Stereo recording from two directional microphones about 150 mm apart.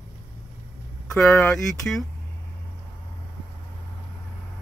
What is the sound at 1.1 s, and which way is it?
Speech, 10° left (ahead or behind).